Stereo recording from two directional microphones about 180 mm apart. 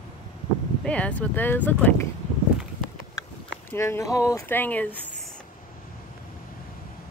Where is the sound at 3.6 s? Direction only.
15° left (ahead or behind).